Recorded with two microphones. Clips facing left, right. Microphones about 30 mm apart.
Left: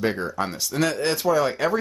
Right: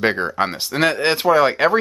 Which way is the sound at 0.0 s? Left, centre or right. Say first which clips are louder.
Right 6 dB; right.